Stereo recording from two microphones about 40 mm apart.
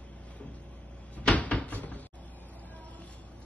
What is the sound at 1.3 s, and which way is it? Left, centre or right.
Cupboard open or close, left.